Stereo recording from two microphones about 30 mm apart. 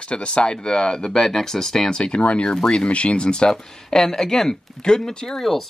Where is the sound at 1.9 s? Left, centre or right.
Left.